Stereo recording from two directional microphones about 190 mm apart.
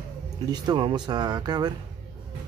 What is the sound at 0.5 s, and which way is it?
Speech, 20° right (ahead or behind).